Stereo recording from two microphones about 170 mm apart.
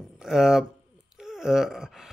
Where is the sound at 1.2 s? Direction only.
5° right (ahead or behind).